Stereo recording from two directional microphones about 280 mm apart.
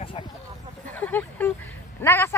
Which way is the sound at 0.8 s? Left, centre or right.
Centre.